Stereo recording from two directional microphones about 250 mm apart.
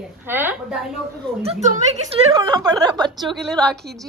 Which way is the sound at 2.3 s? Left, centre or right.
Centre.